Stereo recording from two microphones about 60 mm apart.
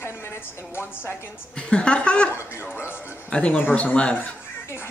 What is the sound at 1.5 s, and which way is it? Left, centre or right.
Speech, centre.